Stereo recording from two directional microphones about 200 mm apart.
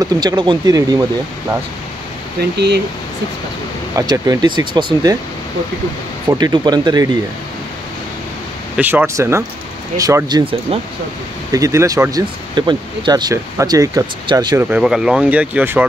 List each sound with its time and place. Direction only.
0.0 s speech: 20° right (ahead or behind)
2.5 s speech: 55° right (ahead or behind)
3.9 s speech: 20° right (ahead or behind)
6.2 s speech: 20° right (ahead or behind)
8.7 s speech: 10° right (ahead or behind)